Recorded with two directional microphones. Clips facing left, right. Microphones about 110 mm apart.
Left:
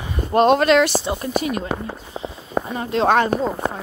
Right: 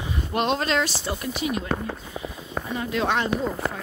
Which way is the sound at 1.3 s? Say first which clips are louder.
Left 6 dB; 50° left (ahead or behind).